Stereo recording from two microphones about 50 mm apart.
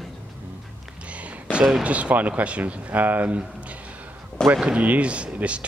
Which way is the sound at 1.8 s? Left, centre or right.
Right.